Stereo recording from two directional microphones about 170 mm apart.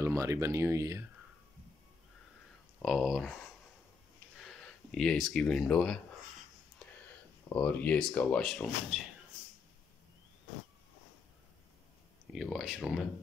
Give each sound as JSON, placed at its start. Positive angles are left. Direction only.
{"t": 0.0, "sound": "speech", "side_deg": -15}
{"t": 2.8, "sound": "speech", "side_deg": 0}
{"t": 7.4, "sound": "speech", "side_deg": 5}
{"t": 12.3, "sound": "speech", "side_deg": 0}